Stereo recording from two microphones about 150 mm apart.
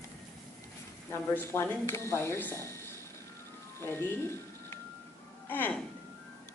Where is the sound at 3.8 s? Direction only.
15° left (ahead or behind).